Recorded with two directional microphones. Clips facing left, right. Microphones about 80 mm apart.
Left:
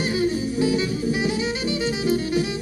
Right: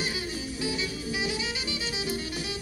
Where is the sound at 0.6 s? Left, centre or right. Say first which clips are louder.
Left 10 dB; left.